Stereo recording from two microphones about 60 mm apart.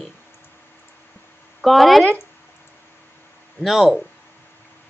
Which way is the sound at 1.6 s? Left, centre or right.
Centre.